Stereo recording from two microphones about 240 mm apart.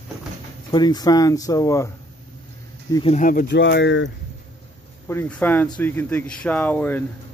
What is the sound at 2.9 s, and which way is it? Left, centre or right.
Speech, left.